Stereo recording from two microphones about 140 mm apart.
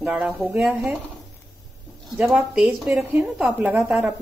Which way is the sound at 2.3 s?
5° right (ahead or behind).